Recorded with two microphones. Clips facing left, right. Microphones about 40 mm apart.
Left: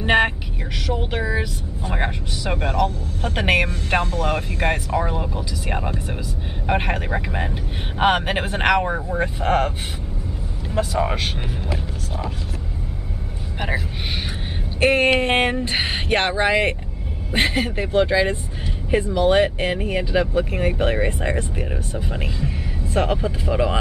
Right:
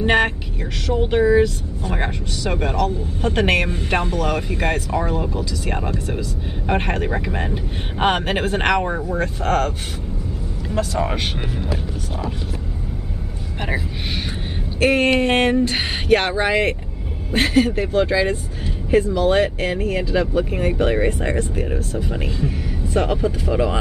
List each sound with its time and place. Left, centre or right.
0.0 s vehicle: centre
0.8 s speech: centre
9.2 s speech: centre
14.8 s speech: left
15.0 s speech: centre
20.7 s speech: centre